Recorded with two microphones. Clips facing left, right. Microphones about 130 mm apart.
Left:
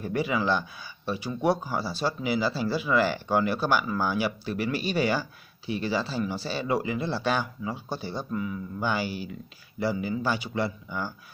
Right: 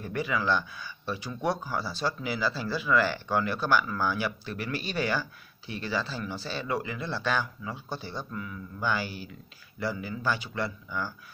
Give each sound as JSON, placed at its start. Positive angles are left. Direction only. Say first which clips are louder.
{"t": 0.1, "sound": "speech", "louder": "left 2 dB", "side_deg": 10}